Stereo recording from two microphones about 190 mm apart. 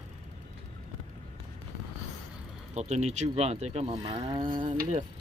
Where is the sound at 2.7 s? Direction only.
35° right (ahead or behind).